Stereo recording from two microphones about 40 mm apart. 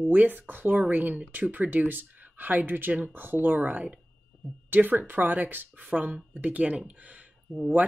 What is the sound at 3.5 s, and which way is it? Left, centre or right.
Speech, right.